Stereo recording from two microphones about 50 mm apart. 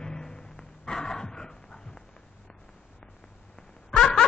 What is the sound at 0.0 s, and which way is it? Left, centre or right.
Dog, centre.